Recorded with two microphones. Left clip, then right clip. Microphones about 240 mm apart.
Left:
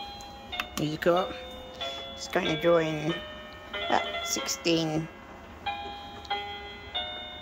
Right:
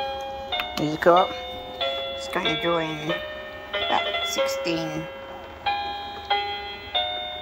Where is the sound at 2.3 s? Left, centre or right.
Centre.